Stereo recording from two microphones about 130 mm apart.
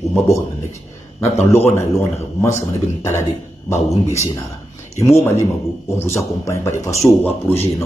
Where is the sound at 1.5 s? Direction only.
20° left (ahead or behind).